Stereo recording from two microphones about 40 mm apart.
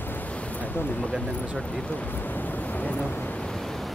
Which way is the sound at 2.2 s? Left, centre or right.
Left.